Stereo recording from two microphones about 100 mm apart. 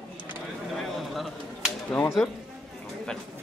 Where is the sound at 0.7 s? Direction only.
Centre (ahead or behind).